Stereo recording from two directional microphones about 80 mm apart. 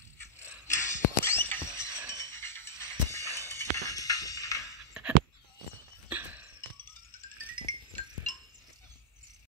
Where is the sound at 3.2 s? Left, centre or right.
Right.